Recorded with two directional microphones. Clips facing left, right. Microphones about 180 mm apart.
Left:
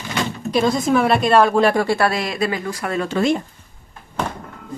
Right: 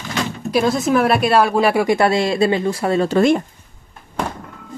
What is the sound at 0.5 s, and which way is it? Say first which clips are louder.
A woman's voice: right 1 dB; 5° right (ahead or behind).